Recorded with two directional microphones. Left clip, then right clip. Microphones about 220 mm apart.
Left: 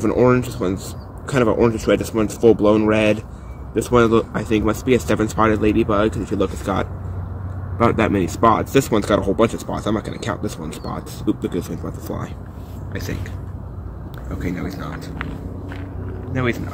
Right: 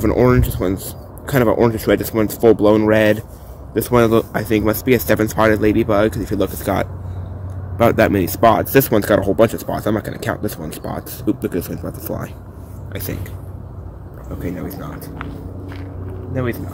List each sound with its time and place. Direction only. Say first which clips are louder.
0.0 s speech: right 1 dB; 35° right (ahead or behind)
14.4 s speech: even; 30° right (ahead or behind)